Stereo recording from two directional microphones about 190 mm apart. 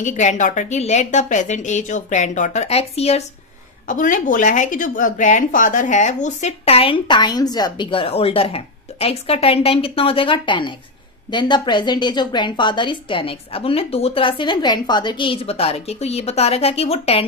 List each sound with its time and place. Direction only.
0.0 s a woman's voice: 40° left (ahead or behind)
3.8 s a woman's voice: 45° left (ahead or behind)